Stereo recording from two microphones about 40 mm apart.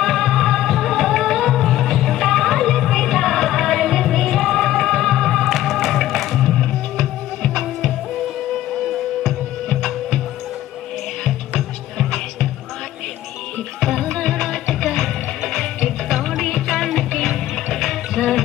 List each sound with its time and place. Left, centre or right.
0.0 s music: centre
9.7 s music: centre
12.0 s music: centre
13.8 s music: centre
14.1 s music: centre